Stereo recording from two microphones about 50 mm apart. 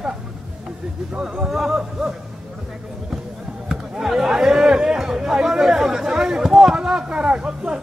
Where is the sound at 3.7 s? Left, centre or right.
Centre.